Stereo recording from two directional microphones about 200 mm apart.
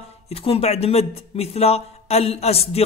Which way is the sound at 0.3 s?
30° left (ahead or behind).